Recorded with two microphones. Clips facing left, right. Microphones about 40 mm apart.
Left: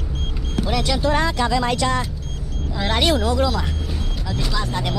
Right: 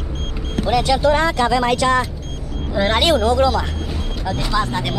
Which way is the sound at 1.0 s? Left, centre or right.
Right.